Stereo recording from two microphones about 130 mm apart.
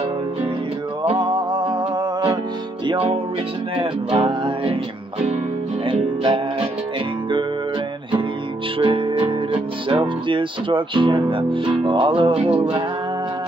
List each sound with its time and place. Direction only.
1.0 s music: 35° right (ahead or behind)
2.9 s music: 45° right (ahead or behind)
5.9 s music: 40° right (ahead or behind)
8.7 s music: 40° right (ahead or behind)